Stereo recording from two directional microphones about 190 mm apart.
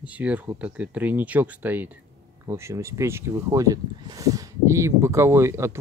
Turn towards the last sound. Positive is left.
turn(degrees=-15)  # may be behind; listen again after turning